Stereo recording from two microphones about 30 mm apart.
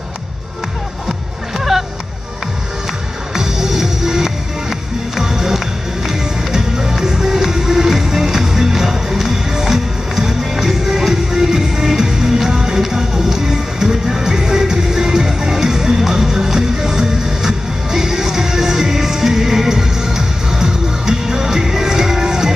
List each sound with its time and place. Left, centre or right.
1.6 s music: centre
3.3 s music: centre